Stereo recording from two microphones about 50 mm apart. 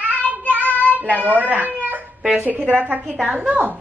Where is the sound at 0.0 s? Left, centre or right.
Right.